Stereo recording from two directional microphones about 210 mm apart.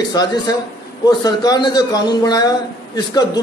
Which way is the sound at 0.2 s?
15° left (ahead or behind).